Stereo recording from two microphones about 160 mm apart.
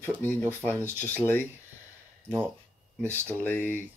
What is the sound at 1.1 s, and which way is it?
Speech, 10° left (ahead or behind).